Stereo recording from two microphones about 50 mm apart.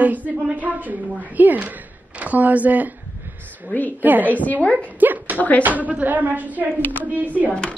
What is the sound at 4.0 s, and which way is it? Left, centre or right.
A woman's voice, right.